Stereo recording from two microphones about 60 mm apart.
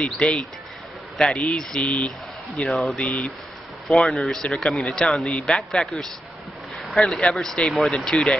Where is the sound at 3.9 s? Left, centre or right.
Centre.